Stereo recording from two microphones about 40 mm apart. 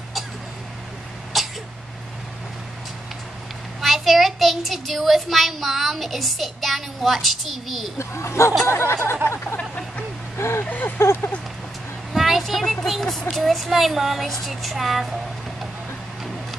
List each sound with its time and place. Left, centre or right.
1.3 s throat clearing: centre
3.8 s a child's voice: centre
8.6 s speech: left
10.3 s speech: left
10.6 s a sound: left
11.0 s speech: left
12.1 s a sound: centre
12.8 s a child's voice: centre